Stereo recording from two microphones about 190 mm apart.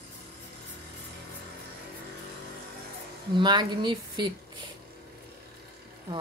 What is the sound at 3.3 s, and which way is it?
Speech, 25° right (ahead or behind).